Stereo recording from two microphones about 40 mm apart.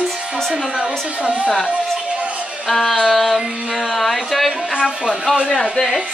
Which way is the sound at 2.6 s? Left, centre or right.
Centre.